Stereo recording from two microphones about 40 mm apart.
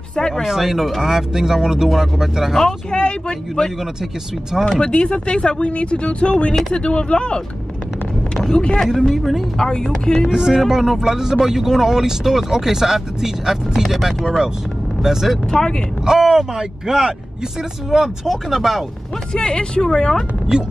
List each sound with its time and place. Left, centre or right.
0.3 s speech: centre
3.0 s speech: left
4.6 s speech: left
8.7 s speech: centre
9.6 s speech: left
10.3 s speech: centre
14.2 s speech: centre
15.0 s speech: centre
15.5 s speech: centre
16.1 s speech: centre
19.3 s speech: left